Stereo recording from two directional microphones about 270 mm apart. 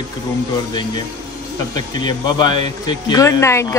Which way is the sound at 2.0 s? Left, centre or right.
Centre.